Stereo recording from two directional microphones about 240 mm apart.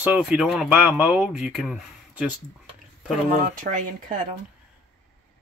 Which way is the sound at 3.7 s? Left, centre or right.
Right.